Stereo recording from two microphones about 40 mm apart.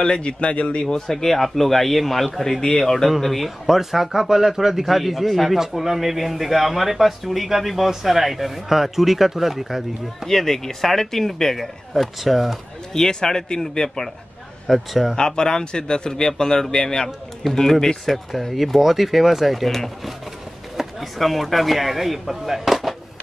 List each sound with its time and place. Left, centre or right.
0.0 s speech: left
0.8 s a man's voice: centre
10.2 s a man's voice: centre
11.9 s speech: centre
12.9 s a man's voice: centre
14.7 s speech: centre
15.1 s a man's voice: centre